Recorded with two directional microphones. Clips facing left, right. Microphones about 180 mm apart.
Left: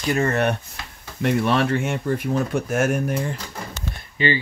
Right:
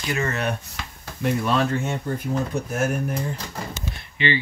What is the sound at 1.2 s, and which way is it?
Speech, 70° left (ahead or behind).